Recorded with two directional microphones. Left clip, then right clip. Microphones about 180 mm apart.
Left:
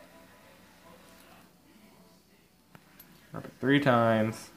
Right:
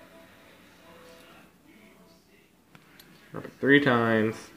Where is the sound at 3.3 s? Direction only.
40° left (ahead or behind).